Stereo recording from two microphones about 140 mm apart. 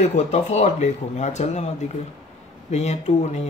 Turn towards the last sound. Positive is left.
turn(degrees=55)  # may be behind; listen again after turning